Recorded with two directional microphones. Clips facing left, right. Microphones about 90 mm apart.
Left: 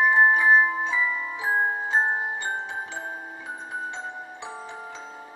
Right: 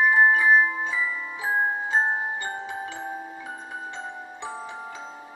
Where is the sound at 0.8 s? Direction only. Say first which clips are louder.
Left 2 dB; 5° right (ahead or behind).